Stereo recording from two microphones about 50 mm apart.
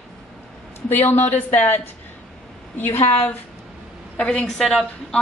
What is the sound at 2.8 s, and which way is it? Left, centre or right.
Speech, left.